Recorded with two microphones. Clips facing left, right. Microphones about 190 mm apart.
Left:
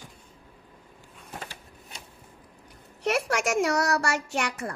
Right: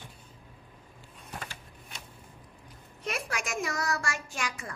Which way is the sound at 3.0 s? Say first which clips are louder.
Left 9 dB; 75° left (ahead or behind).